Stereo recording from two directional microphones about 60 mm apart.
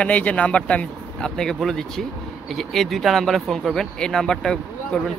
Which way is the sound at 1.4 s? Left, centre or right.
Centre.